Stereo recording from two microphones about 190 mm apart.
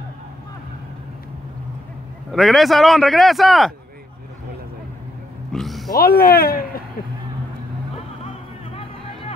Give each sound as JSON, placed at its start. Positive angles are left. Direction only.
{"t": 2.3, "sound": "speech", "side_deg": 0}
{"t": 5.5, "sound": "a sound", "side_deg": 0}
{"t": 5.9, "sound": "speech", "side_deg": 50}